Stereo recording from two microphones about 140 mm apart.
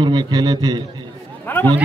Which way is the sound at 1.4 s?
15° left (ahead or behind).